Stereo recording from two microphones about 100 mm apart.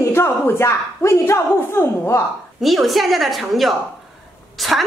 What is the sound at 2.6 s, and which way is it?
A woman's voice, centre (ahead or behind).